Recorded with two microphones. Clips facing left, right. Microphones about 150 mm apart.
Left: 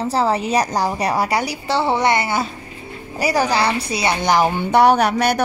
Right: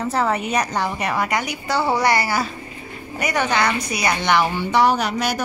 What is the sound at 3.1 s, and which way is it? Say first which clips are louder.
A woman's voice: left 3 dB; 35° left (ahead or behind).